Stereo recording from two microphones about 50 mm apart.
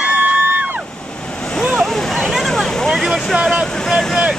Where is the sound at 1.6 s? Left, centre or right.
Centre.